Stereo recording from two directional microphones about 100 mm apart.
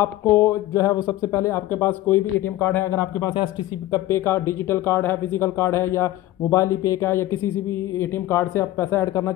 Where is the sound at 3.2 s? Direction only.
40° left (ahead or behind).